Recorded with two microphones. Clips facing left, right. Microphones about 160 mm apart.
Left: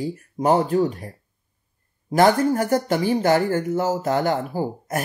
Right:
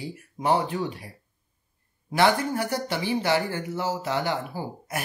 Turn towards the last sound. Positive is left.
turn(degrees=45)  # may be behind; listen again after turning